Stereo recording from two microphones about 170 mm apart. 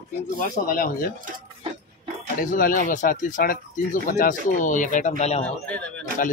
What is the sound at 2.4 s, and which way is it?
Speech, 55° left (ahead or behind).